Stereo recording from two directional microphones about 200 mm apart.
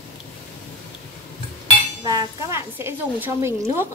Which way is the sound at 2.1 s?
15° right (ahead or behind).